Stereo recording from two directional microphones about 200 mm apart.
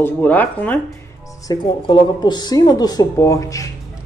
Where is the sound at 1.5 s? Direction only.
25° left (ahead or behind).